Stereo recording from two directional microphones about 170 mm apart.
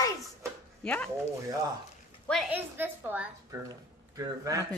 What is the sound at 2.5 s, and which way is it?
A woman's voice, 10° right (ahead or behind).